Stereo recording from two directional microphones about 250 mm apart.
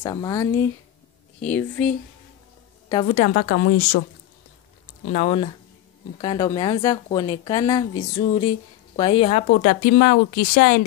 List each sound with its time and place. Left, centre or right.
0.0 s speech: centre
2.9 s a woman's voice: left
5.1 s speech: left